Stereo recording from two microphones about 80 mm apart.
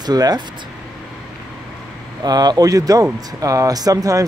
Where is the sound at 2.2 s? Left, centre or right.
Right.